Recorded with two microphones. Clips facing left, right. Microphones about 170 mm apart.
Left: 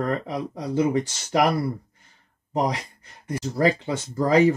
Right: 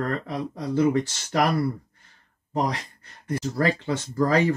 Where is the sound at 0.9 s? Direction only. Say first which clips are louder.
Left 2 dB; 15° left (ahead or behind).